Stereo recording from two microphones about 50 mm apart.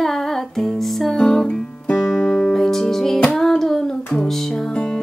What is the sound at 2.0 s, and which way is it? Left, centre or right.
Music, centre.